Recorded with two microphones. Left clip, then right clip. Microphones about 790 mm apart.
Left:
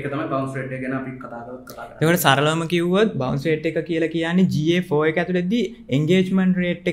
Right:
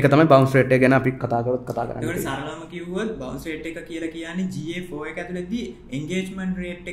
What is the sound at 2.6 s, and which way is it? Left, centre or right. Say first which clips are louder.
Speech: left 10 dB; left.